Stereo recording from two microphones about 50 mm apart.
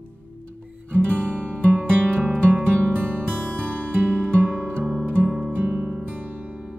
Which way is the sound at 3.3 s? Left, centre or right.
Left.